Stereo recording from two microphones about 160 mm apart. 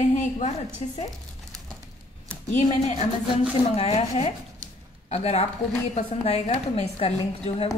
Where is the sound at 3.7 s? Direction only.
40° left (ahead or behind).